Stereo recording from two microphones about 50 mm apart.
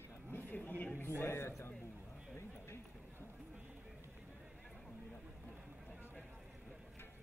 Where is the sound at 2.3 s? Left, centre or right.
Left.